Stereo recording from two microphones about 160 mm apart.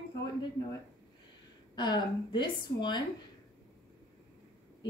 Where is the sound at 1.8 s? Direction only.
25° left (ahead or behind).